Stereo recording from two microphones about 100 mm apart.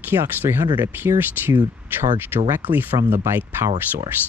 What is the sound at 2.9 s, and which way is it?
Speech, 45° right (ahead or behind).